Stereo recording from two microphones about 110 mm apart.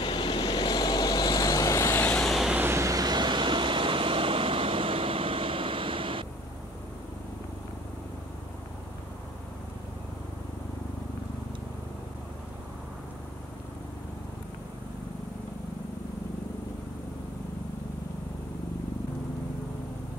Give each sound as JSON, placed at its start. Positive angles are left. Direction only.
{"t": 0.0, "sound": "vehicle", "side_deg": 45}
{"t": 2.0, "sound": "vehicle", "side_deg": 5}
{"t": 2.5, "sound": "vehicle", "side_deg": -20}